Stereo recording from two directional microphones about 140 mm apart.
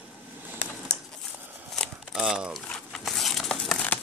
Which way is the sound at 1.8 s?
5° right (ahead or behind).